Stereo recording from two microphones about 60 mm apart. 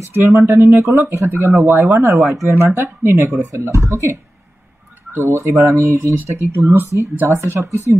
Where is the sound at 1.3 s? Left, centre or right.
Right.